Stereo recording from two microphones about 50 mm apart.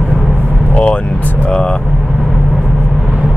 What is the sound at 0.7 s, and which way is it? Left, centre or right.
Speech, left.